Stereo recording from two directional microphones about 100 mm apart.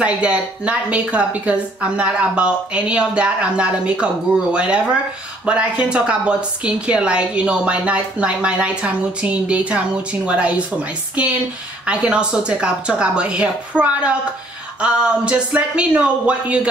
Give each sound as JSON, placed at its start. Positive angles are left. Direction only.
{"t": 0.0, "sound": "a woman's voice", "side_deg": -10}